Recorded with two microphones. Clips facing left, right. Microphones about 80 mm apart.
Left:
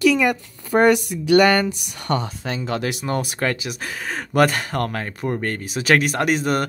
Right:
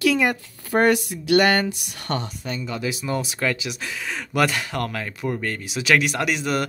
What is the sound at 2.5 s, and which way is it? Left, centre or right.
Speech, left.